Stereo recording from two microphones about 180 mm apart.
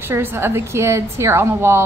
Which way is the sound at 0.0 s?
10° right (ahead or behind).